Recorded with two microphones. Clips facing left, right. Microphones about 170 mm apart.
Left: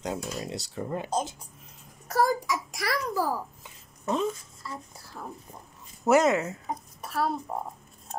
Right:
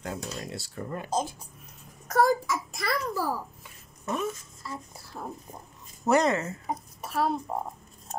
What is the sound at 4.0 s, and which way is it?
Speech, 25° left (ahead or behind).